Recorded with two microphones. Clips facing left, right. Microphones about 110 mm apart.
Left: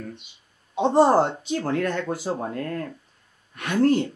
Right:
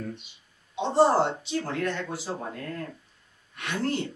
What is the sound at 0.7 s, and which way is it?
Speech, 45° left (ahead or behind).